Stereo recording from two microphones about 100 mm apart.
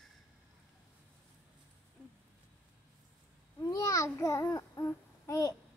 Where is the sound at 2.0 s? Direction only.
10° left (ahead or behind).